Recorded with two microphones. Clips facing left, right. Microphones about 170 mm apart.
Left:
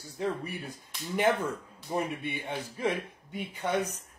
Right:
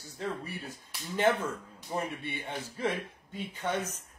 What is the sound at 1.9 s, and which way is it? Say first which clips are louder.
Speech: left 3 dB; 15° left (ahead or behind).